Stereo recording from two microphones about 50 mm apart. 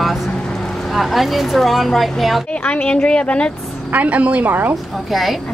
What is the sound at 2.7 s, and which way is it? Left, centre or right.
Speech, left.